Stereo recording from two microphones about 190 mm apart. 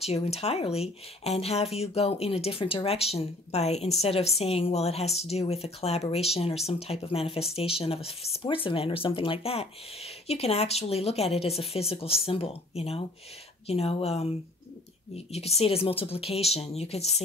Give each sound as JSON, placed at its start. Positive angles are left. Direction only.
{"t": 0.0, "sound": "speech", "side_deg": 35}